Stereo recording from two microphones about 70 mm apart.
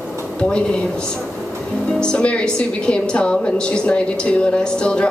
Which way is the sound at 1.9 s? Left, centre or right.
Centre.